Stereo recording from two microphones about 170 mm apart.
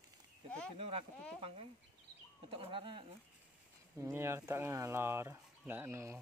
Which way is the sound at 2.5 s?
30° right (ahead or behind).